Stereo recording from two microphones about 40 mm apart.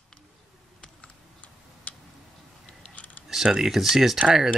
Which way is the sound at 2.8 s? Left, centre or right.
Left.